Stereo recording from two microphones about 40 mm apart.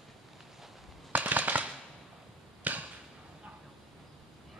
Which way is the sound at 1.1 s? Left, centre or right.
Right.